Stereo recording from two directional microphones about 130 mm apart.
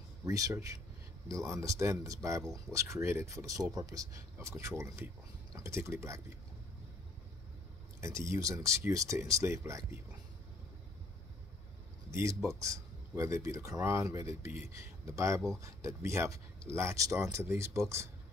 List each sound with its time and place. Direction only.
0.2 s speech: 25° right (ahead or behind)
8.0 s speech: 20° right (ahead or behind)
12.1 s speech: 20° right (ahead or behind)